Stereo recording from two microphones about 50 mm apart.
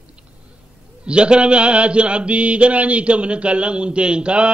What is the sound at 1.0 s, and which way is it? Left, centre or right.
Mantra, right.